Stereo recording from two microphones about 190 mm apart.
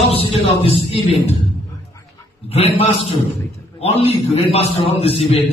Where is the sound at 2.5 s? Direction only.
35° left (ahead or behind).